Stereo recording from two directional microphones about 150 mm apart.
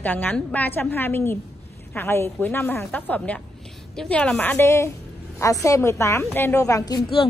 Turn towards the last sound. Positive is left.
turn(degrees=25)  # may be behind; listen again after turning